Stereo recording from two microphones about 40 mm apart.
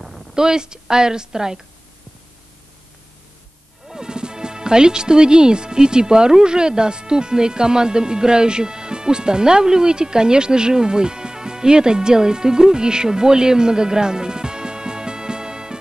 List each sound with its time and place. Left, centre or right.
0.0 s a woman's voice: centre
3.8 s speech: centre